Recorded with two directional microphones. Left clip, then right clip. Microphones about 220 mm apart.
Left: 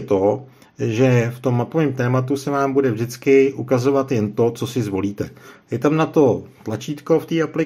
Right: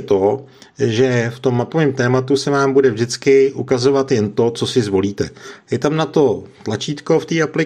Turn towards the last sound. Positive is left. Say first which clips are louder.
# right 2 dB
turn(degrees=-20)  # may be behind; listen again after turning